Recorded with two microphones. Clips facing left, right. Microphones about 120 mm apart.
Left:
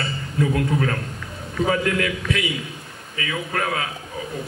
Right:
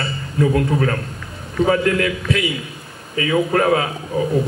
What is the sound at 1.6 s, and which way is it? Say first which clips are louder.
A man's voice: right 4 dB; 40° right (ahead or behind).